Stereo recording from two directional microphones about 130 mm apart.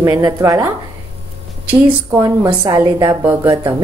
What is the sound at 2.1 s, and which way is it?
Speech, 20° right (ahead or behind).